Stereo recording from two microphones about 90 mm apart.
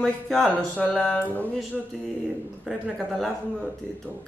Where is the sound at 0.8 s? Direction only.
15° left (ahead or behind).